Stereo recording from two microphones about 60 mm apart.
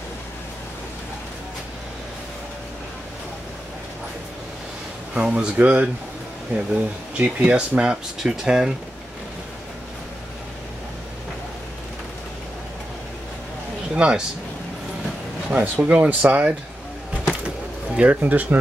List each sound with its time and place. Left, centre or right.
5.1 s speech: centre
13.9 s speech: centre
15.6 s speech: right
15.9 s speech: centre
17.9 s speech: right